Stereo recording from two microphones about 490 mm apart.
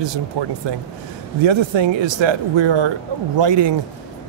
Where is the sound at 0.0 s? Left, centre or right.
Right.